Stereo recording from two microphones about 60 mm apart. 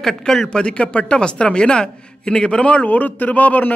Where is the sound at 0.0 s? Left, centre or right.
Centre.